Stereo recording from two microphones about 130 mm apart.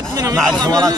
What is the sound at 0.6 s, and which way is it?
Speech, 30° right (ahead or behind).